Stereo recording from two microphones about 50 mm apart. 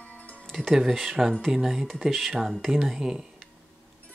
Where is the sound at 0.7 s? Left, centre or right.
Centre.